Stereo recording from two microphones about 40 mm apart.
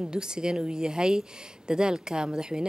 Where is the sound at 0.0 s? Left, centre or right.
Right.